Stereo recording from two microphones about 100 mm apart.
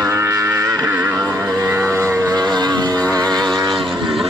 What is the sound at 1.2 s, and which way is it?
Vehicle, 35° right (ahead or behind).